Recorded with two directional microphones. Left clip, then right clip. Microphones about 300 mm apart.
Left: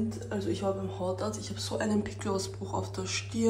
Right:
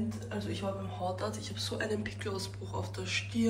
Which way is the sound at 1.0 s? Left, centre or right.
Centre.